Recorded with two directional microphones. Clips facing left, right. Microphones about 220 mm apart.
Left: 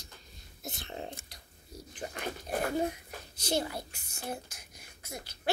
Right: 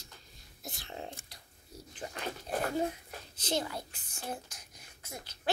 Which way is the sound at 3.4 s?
10° left (ahead or behind).